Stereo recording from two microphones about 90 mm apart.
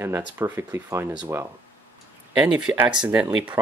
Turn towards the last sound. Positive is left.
turn(degrees=-10)  # may be behind; listen again after turning